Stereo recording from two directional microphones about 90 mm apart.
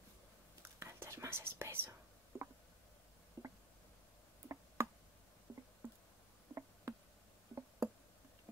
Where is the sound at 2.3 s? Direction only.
30° right (ahead or behind).